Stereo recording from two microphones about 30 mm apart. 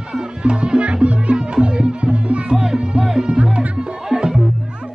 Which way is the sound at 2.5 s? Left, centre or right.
Right.